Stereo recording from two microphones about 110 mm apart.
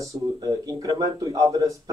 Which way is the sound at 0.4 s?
35° right (ahead or behind).